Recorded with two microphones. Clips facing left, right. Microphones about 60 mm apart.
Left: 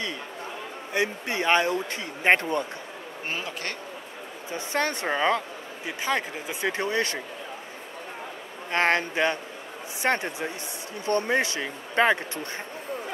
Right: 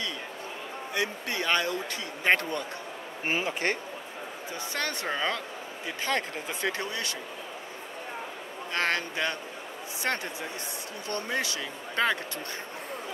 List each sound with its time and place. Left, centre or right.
0.9 s speech: left
3.3 s speech: right
4.6 s speech: left
8.7 s speech: left